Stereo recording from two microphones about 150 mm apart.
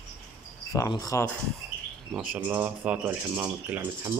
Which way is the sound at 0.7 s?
20° left (ahead or behind).